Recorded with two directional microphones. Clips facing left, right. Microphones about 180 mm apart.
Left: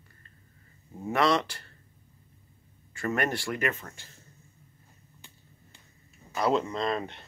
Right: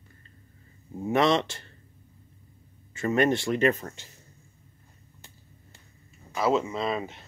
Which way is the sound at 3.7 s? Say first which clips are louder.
Right 7 dB; 35° right (ahead or behind).